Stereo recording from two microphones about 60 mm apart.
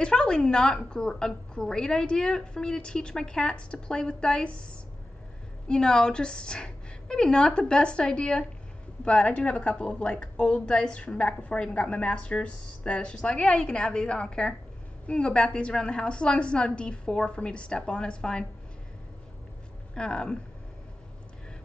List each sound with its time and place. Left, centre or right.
0.0 s speech: centre
5.7 s speech: centre
19.9 s speech: centre